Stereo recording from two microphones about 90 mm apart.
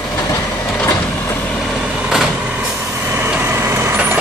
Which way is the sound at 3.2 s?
20° right (ahead or behind).